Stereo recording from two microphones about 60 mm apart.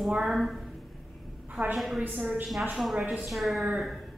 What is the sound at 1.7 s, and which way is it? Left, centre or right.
A woman's voice, centre.